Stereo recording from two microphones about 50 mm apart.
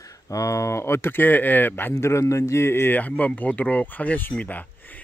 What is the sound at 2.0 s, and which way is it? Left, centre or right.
Speech, left.